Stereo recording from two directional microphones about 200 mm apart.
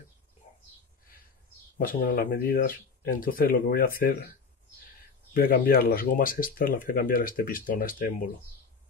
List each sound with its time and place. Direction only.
1.8 s speech: 45° left (ahead or behind)
5.3 s speech: 45° left (ahead or behind)